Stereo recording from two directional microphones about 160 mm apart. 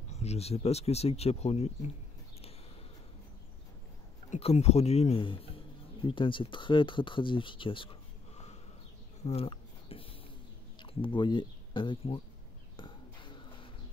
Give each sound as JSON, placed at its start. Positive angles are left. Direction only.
{"t": 0.1, "sound": "speech", "side_deg": 40}
{"t": 4.3, "sound": "speech", "side_deg": 40}
{"t": 9.2, "sound": "a sound", "side_deg": 40}
{"t": 10.8, "sound": "speech", "side_deg": 30}
{"t": 12.7, "sound": "burping", "side_deg": 30}